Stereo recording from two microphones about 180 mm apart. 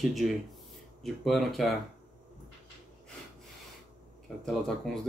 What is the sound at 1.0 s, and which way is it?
Speech, centre (ahead or behind).